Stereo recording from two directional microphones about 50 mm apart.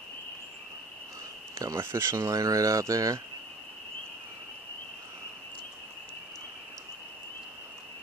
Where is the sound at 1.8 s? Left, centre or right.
Right.